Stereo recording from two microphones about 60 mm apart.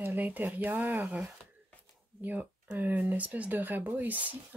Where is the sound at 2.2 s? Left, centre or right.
Right.